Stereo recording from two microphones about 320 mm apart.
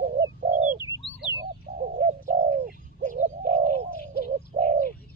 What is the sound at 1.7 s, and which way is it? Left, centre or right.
Bird, right.